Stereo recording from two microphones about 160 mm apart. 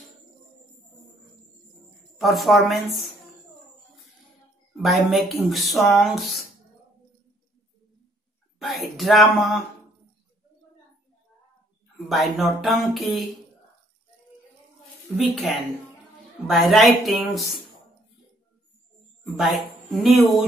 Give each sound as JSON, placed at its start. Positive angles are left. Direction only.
{"t": 2.1, "sound": "speech", "side_deg": 0}
{"t": 4.7, "sound": "speech", "side_deg": 0}
{"t": 8.5, "sound": "speech", "side_deg": 0}
{"t": 12.1, "sound": "speech", "side_deg": 0}
{"t": 15.1, "sound": "speech", "side_deg": 0}
{"t": 19.2, "sound": "a woman's voice", "side_deg": -5}